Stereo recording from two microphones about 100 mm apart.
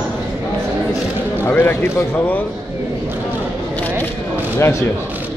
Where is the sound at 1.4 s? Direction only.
15° left (ahead or behind).